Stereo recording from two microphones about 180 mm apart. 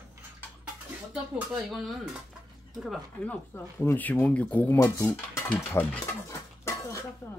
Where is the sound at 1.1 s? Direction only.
Centre (ahead or behind).